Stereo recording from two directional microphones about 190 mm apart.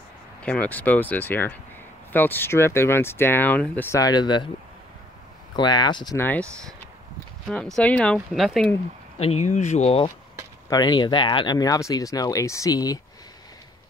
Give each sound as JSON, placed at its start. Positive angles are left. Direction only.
{"t": 0.4, "sound": "speech", "side_deg": 5}
{"t": 4.0, "sound": "speech", "side_deg": 20}
{"t": 5.6, "sound": "speech", "side_deg": 20}
{"t": 6.1, "sound": "speech", "side_deg": 10}
{"t": 7.4, "sound": "speech", "side_deg": 0}
{"t": 9.2, "sound": "speech", "side_deg": 35}
{"t": 10.7, "sound": "speech", "side_deg": 20}